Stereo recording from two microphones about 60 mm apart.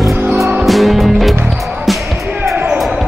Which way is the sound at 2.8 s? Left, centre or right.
Centre.